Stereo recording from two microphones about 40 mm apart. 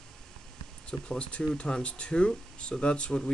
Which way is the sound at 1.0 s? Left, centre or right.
Left.